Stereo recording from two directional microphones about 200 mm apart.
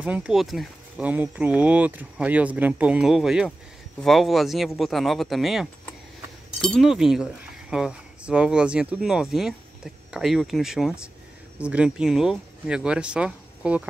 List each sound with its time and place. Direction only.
0.0 s speech: 5° right (ahead or behind)